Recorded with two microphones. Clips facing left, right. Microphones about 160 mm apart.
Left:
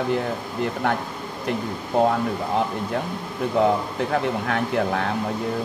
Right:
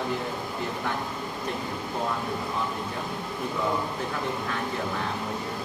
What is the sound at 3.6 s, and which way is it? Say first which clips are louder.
Speech: left 9 dB; 75° left (ahead or behind).